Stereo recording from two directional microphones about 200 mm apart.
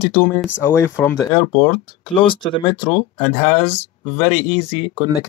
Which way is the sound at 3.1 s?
35° left (ahead or behind).